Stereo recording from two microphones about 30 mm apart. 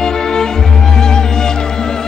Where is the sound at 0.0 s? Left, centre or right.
Centre.